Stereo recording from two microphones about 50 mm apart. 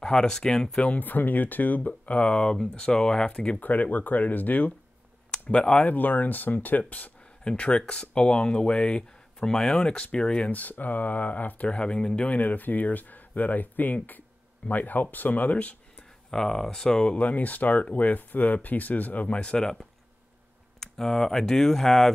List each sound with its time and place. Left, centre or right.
0.0 s speech: centre
0.9 s speech: left
3.6 s speech: left
5.3 s speech: centre
5.9 s speech: left; by 10.5 s centre
10.5 s speech: left
11.7 s speech: left
12.2 s speech: left
16.3 s speech: centre
17.1 s speech: left; by 22.1 s centre